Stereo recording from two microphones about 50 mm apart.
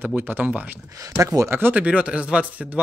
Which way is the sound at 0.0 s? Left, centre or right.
Right.